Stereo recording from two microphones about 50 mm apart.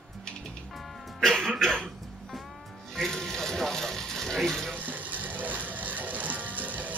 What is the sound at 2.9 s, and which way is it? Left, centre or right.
Speech, centre.